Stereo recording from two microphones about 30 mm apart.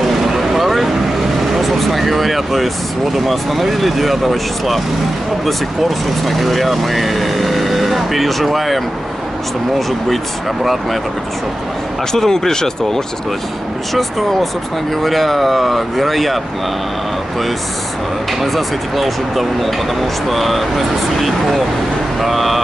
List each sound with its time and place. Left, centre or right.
0.0 s vehicle: centre
3.3 s speech: centre
12.1 s speech: centre
15.0 s speech: centre
18.4 s speech: centre